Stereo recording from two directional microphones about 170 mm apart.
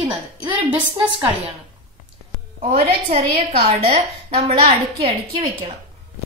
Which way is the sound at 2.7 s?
35° right (ahead or behind).